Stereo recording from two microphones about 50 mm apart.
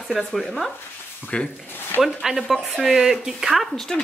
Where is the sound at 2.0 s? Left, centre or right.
Centre.